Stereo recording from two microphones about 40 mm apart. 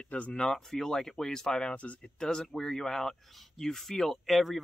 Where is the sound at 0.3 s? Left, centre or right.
Centre.